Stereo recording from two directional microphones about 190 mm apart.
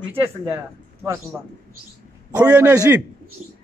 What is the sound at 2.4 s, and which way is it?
Speech, 5° right (ahead or behind).